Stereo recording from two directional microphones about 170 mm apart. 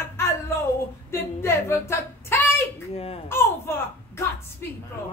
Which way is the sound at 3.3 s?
15° left (ahead or behind).